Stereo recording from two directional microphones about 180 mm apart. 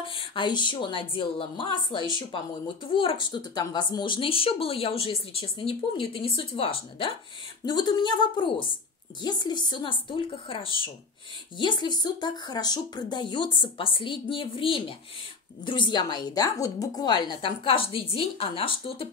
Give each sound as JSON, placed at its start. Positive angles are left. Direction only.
{"t": 0.0, "sound": "speech", "side_deg": 30}